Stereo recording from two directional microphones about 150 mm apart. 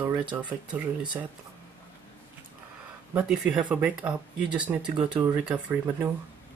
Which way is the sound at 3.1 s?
5° right (ahead or behind).